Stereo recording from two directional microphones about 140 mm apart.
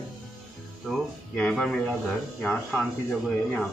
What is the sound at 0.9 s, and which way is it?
Speech, 10° left (ahead or behind).